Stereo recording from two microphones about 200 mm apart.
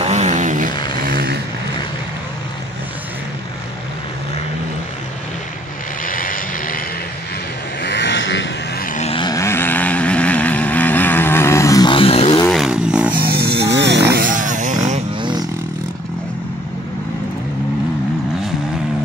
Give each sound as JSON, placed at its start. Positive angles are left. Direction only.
{"t": 0.0, "sound": "vehicle", "side_deg": -35}
{"t": 0.7, "sound": "vehicle", "side_deg": 20}
{"t": 1.0, "sound": "vehicle", "side_deg": -50}
{"t": 6.0, "sound": "vehicle", "side_deg": 45}
{"t": 7.8, "sound": "a sound", "side_deg": 60}
{"t": 8.9, "sound": "a sound", "side_deg": 30}
{"t": 9.2, "sound": "vehicle", "side_deg": 15}
{"t": 12.4, "sound": "a sound", "side_deg": 0}
{"t": 13.1, "sound": "chainsaw", "side_deg": -50}
{"t": 15.1, "sound": "roaring cats", "side_deg": -25}